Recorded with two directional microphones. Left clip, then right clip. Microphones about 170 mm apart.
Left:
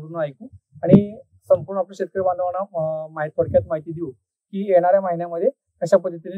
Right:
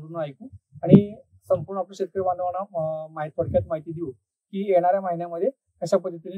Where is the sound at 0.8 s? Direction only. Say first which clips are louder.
Left 2 dB; 15° left (ahead or behind).